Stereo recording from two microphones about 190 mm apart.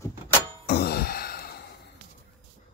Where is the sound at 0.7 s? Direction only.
55° left (ahead or behind).